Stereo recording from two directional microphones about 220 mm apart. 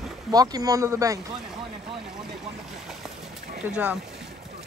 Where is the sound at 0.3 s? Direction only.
15° right (ahead or behind).